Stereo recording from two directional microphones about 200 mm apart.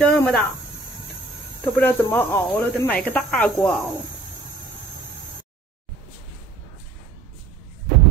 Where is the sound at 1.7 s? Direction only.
10° left (ahead or behind).